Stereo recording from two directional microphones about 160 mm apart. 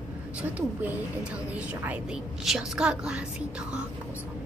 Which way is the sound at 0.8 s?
10° right (ahead or behind).